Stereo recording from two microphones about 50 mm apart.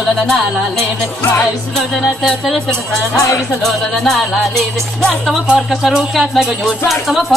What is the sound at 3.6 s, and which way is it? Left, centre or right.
Speech, centre.